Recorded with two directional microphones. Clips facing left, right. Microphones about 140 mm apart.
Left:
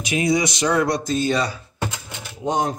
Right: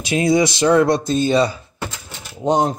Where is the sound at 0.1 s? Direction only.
40° right (ahead or behind).